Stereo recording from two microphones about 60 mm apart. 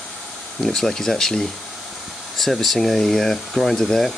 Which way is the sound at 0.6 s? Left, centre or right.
Centre.